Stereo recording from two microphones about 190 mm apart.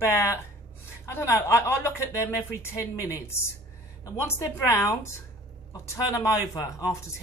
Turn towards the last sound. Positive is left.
turn(degrees=20)  # may be behind; listen again after turning